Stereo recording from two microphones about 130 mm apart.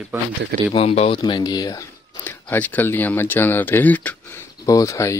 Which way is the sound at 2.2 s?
15° left (ahead or behind).